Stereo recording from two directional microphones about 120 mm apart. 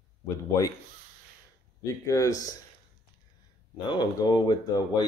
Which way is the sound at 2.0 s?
25° left (ahead or behind).